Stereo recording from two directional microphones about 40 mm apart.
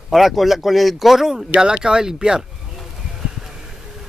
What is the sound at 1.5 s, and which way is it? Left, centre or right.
Speech, right.